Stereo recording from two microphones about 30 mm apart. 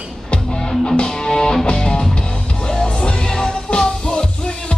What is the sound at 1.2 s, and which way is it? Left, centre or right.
Music, left.